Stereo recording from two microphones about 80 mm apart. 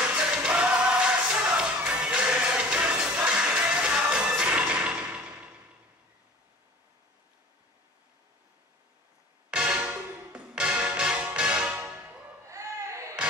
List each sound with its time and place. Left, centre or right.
0.0 s music: centre
9.6 s music: centre
12.4 s a sound: right